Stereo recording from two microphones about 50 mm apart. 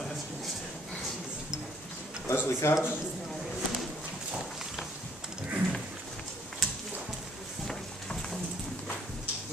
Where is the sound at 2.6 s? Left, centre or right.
Left.